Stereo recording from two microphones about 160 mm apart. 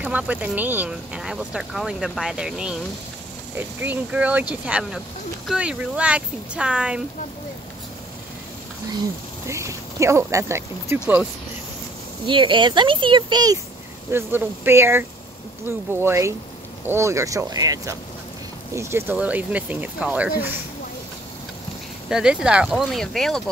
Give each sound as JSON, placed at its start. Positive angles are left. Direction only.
{"t": 0.0, "sound": "speech", "side_deg": -10}
{"t": 9.5, "sound": "speech", "side_deg": -20}
{"t": 12.3, "sound": "speech", "side_deg": -30}
{"t": 14.1, "sound": "speech", "side_deg": -15}
{"t": 22.1, "sound": "speech", "side_deg": -5}